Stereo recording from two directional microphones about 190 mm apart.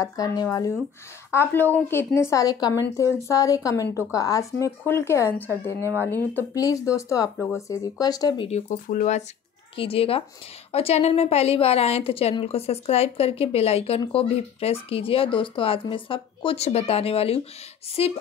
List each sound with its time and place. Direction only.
0.0 s a woman's voice: 20° left (ahead or behind)
6.3 s a woman's voice: 20° left (ahead or behind)
8.5 s a woman's voice: 40° left (ahead or behind)
9.8 s a woman's voice: 30° left (ahead or behind)